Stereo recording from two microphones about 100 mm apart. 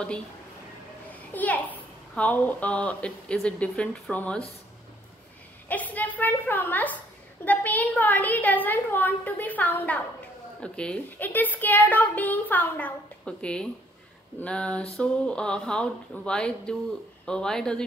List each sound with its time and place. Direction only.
1.3 s a child's voice: 15° left (ahead or behind)
5.7 s a child's voice: 15° left (ahead or behind)